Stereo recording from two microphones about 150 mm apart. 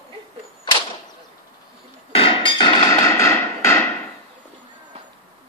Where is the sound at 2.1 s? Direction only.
35° left (ahead or behind); by 3.9 s 15° left (ahead or behind).